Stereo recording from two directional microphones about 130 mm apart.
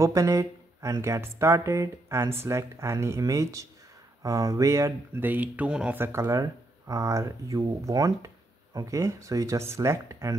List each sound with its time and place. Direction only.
0.0 s speech: 25° right (ahead or behind)
6.2 s speech: 25° right (ahead or behind)